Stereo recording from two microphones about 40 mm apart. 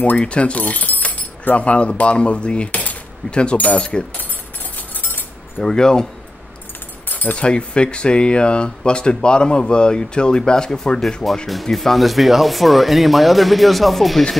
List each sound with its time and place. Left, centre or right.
0.2 s speech: left
3.5 s speech: left
4.7 s chink: left
5.6 s speech: centre
7.1 s keys jangling: left
7.3 s speech: left
11.4 s speech: centre